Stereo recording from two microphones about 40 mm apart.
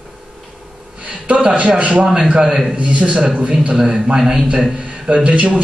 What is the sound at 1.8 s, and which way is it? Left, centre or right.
Speech, right.